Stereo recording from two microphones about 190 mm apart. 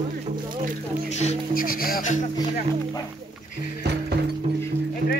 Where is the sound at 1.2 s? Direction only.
40° left (ahead or behind).